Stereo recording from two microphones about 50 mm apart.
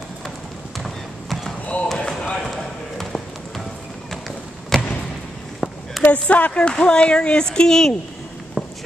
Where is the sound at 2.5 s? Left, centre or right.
Centre.